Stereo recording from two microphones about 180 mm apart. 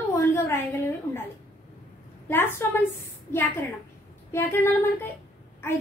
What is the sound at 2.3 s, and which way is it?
A woman's voice, 10° left (ahead or behind).